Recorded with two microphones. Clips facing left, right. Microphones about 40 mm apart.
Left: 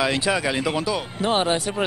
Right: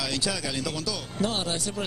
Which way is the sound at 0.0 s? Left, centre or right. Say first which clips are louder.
Left 8 dB; left.